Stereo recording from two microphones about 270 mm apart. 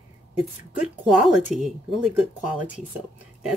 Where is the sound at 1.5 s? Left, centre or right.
Centre.